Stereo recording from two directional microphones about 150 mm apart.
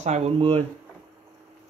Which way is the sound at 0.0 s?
50° right (ahead or behind).